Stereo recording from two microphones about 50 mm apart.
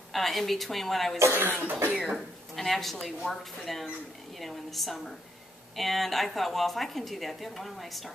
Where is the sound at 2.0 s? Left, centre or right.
Centre.